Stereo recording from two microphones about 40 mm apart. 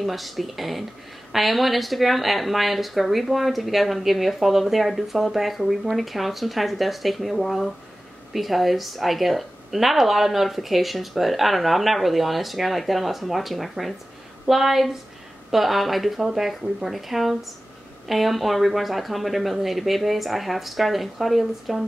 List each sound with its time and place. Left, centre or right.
0.0 s speech: centre